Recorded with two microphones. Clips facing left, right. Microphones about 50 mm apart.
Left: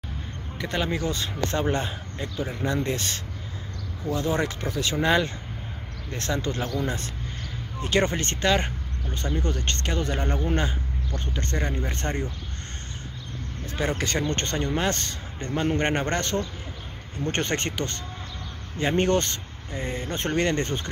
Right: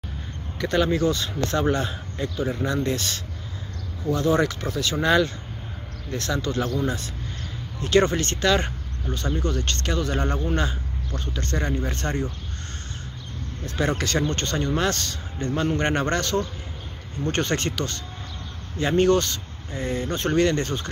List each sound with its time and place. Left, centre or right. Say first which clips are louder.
0.6 s a man's voice: right 6 dB; centre
6.1 s a man's voice: right 2 dB; left
7.8 s a man's voice: right 4 dB; centre
13.7 s a man's voice: right 3 dB; centre